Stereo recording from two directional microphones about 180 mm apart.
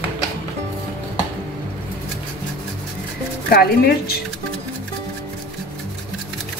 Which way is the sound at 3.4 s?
60° left (ahead or behind).